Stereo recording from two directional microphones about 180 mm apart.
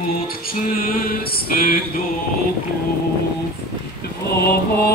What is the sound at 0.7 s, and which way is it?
Mantra, 55° left (ahead or behind).